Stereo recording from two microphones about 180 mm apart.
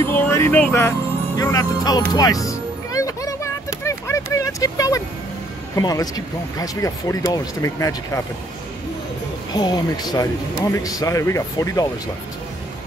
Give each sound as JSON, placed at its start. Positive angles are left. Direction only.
{"t": 0.0, "sound": "music", "side_deg": 15}
{"t": 5.8, "sound": "speech", "side_deg": 20}
{"t": 9.5, "sound": "speech", "side_deg": 20}